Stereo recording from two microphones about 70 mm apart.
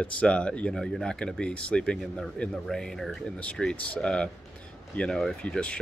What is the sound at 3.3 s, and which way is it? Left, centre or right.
Speech, centre.